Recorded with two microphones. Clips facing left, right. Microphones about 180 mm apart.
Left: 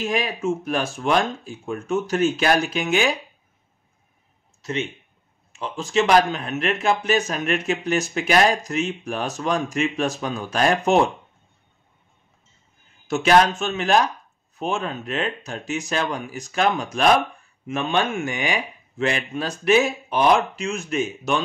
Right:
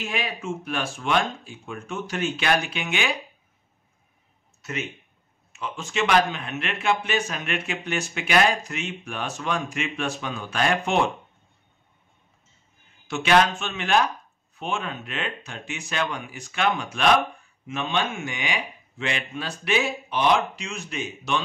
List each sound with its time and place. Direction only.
0.0 s speech: 40° left (ahead or behind)
4.6 s a sound: 30° left (ahead or behind)
5.5 s speech: 35° left (ahead or behind)
13.0 s speech: 40° left (ahead or behind)